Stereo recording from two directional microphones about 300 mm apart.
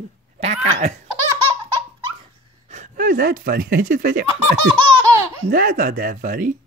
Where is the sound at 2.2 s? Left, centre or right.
Right.